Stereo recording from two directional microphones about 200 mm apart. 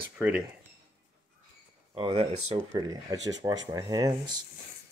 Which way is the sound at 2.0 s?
25° right (ahead or behind).